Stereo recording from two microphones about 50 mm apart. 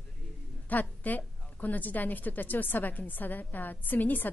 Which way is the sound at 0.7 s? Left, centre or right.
Left.